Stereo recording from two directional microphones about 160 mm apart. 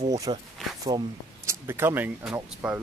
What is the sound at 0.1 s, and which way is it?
Speech, 20° right (ahead or behind).